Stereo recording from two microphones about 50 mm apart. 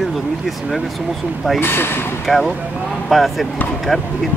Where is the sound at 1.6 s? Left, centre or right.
Left.